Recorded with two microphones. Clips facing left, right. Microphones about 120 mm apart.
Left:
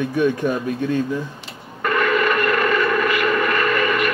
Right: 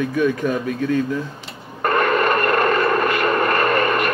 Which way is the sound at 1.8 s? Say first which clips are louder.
Right 1 dB; 40° right (ahead or behind).